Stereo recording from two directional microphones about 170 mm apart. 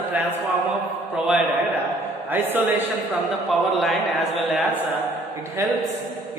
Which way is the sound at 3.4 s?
Centre (ahead or behind).